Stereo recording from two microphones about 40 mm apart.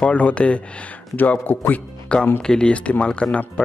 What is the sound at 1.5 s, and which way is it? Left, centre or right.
Speech, left.